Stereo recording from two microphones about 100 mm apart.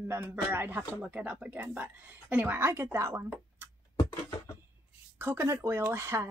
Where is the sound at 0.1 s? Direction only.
25° right (ahead or behind).